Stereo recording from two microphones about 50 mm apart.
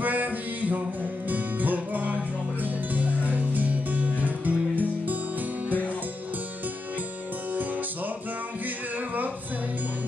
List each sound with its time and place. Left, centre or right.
0.0 s music: right
8.6 s music: right